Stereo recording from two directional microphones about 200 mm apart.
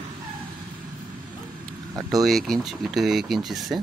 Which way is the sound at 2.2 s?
Centre (ahead or behind).